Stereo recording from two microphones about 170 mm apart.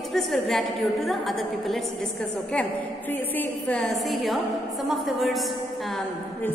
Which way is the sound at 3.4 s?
5° left (ahead or behind).